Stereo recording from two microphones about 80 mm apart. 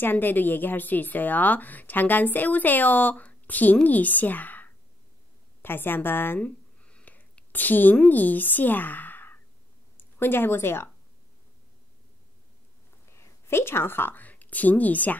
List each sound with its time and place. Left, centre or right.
0.0 s a woman's voice: left
6.8 s a sound: centre
8.1 s speech: left
13.0 s a woman's voice: left